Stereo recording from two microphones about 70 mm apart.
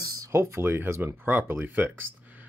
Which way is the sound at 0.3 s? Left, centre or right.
Right.